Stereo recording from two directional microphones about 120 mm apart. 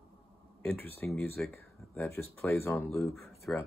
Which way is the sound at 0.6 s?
15° left (ahead or behind).